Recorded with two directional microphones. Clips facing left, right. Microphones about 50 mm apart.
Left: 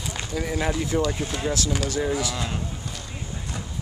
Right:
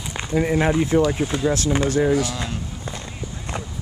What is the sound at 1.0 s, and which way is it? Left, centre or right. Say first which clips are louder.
Speech: right 6 dB; centre.